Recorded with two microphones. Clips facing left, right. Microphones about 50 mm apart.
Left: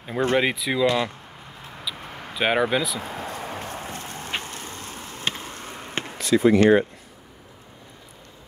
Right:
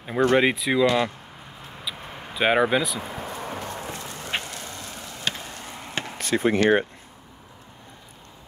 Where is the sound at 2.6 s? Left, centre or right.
Centre.